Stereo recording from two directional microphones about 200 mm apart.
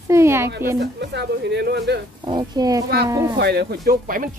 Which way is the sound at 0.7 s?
60° right (ahead or behind).